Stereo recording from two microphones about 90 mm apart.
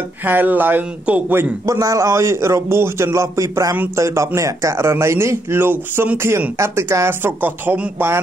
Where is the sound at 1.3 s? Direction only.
35° right (ahead or behind).